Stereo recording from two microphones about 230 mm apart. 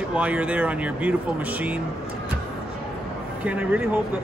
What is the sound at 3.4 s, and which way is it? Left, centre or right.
Speech, centre.